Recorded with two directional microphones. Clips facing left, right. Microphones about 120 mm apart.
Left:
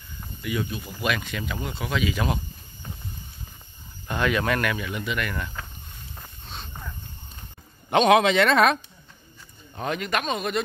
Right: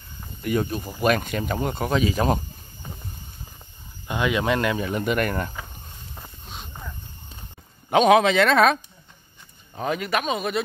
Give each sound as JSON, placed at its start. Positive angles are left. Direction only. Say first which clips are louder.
{"t": 0.4, "sound": "speech", "louder": "right 5 dB", "side_deg": -45}
{"t": 4.1, "sound": "speech", "louder": "right 1 dB", "side_deg": -15}
{"t": 6.1, "sound": "a sound", "louder": "even", "side_deg": -10}
{"t": 7.9, "sound": "speech", "louder": "right 2 dB", "side_deg": 0}
{"t": 9.8, "sound": "speech", "louder": "right 2 dB", "side_deg": -5}